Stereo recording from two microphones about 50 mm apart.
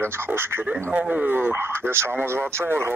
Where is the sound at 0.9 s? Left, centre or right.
Right.